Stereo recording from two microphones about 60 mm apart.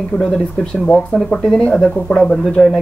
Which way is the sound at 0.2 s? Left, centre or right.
Centre.